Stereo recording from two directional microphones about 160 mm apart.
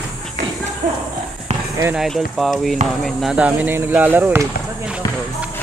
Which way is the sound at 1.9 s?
Centre (ahead or behind).